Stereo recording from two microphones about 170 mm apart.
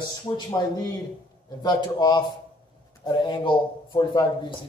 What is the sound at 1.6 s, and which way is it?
A man's voice, 25° left (ahead or behind).